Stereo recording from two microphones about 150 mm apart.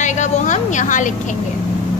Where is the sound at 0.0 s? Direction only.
55° left (ahead or behind).